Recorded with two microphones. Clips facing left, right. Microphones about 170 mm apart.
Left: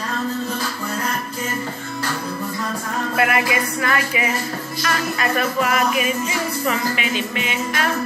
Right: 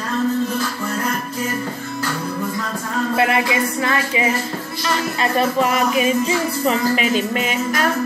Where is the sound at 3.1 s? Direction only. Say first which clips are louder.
Right 1 dB; 25° right (ahead or behind).